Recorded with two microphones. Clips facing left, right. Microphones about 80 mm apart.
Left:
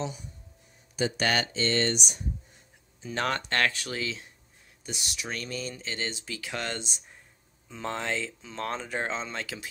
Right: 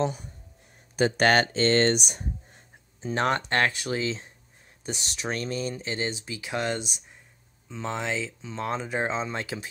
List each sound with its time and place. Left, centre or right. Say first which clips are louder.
0.0 s speech: right 7 dB; right
3.0 s speech: right 4 dB; right
4.8 s speech: right 5 dB; right; by 7.0 s centre
7.7 s speech: right 2 dB; centre; by 9.7 s right